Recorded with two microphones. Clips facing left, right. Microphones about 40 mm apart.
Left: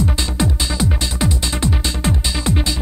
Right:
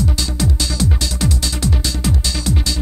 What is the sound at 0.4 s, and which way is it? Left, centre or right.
Music, left.